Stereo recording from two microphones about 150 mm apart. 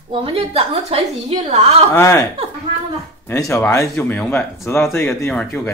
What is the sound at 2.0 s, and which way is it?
Speech, 20° left (ahead or behind).